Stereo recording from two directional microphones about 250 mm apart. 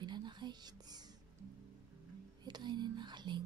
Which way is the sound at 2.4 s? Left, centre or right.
Centre.